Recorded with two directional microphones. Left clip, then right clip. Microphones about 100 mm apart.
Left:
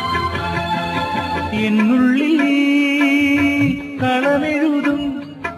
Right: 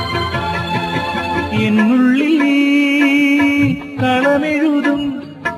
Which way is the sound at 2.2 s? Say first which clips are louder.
Right 2 dB; 20° right (ahead or behind).